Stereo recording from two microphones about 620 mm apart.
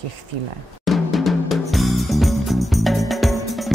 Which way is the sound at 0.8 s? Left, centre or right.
Centre.